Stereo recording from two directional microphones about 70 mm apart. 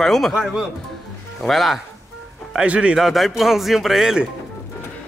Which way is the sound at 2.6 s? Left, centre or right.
Centre.